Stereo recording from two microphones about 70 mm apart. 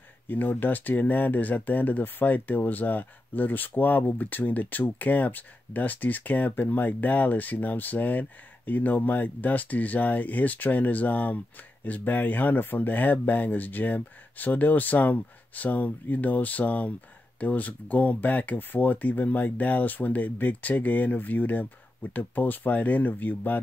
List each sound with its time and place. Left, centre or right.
0.3 s speech: left